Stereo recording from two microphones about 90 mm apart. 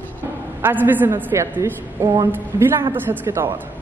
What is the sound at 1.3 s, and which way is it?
A woman's voice, 30° right (ahead or behind).